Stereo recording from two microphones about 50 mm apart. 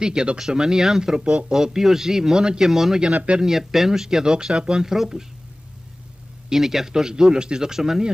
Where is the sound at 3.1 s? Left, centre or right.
Right.